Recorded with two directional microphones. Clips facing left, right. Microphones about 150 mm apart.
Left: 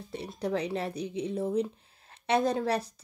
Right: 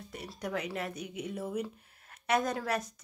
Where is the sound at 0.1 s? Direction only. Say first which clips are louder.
Left 6 dB; 30° left (ahead or behind).